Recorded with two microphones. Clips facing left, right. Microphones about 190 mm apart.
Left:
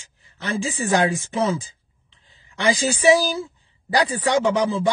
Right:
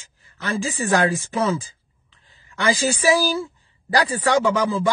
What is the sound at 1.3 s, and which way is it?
Speech, 15° left (ahead or behind).